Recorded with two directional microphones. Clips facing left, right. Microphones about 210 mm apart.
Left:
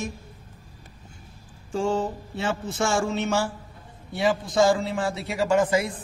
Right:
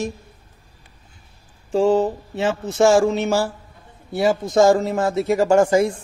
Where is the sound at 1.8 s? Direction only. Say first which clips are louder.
Right 8 dB; 35° right (ahead or behind).